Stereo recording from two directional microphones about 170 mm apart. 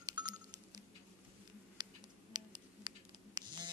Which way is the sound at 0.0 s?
25° right (ahead or behind).